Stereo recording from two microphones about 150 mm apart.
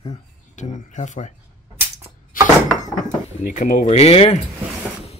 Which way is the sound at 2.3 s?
65° left (ahead or behind).